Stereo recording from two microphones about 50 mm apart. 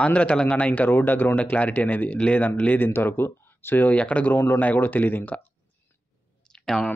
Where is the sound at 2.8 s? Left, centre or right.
Left.